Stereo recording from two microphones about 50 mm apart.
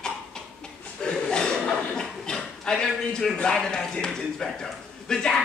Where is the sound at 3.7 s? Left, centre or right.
Centre.